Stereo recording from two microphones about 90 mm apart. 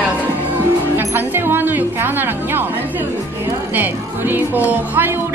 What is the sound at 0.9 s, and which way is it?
Speech, 20° right (ahead or behind).